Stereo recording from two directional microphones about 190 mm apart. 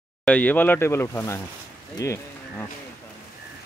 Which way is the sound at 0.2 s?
10° left (ahead or behind).